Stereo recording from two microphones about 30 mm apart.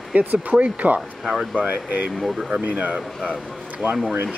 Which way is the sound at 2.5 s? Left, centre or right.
Right.